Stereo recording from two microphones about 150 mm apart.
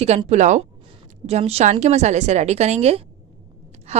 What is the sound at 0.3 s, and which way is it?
A woman's voice, 50° right (ahead or behind).